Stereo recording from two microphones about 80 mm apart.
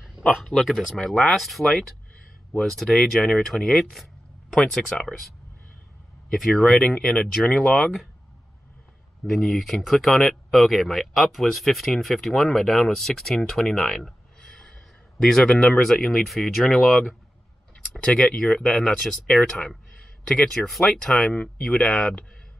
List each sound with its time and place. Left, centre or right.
0.3 s speech: centre
6.5 s speech: centre
9.2 s speech: centre
20.7 s speech: centre